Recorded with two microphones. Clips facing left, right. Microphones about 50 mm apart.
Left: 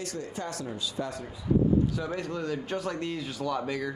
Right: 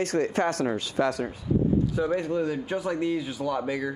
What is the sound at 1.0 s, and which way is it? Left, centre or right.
Speech, right.